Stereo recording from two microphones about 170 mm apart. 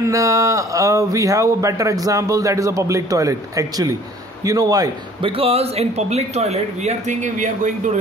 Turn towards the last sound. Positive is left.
turn(degrees=-45)  # may be behind; listen again after turning